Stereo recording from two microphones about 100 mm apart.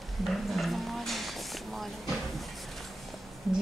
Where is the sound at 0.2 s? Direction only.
Centre (ahead or behind).